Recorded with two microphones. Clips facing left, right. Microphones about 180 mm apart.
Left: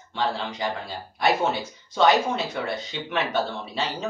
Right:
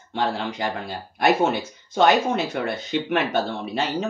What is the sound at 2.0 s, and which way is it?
Speech, 55° right (ahead or behind).